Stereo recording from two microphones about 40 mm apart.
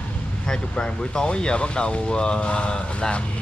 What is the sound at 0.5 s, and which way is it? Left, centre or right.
Speech, left.